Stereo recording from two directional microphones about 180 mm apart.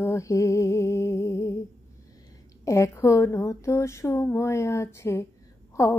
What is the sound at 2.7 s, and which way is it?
Female singing, 15° left (ahead or behind).